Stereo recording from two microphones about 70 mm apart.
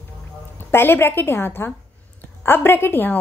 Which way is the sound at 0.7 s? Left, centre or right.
Left.